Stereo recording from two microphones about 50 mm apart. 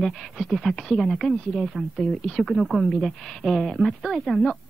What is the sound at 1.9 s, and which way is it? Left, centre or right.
Speech, centre.